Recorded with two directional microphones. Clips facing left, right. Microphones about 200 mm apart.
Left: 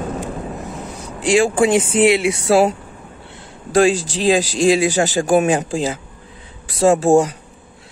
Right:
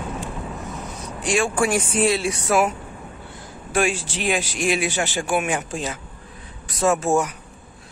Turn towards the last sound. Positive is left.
turn(degrees=30)  # may be behind; listen again after turning